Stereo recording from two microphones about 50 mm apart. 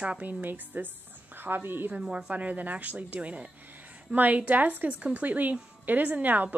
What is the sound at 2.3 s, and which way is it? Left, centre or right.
A woman's voice, right.